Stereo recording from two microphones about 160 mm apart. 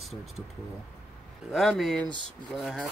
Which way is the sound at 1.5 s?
Centre (ahead or behind).